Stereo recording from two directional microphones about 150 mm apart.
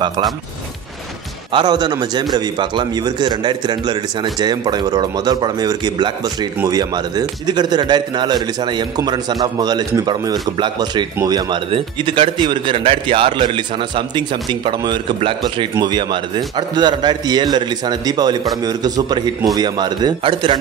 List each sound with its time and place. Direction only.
1.5 s a man's voice: 30° right (ahead or behind)